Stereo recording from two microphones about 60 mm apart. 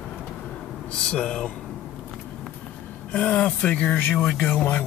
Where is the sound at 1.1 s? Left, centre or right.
Centre.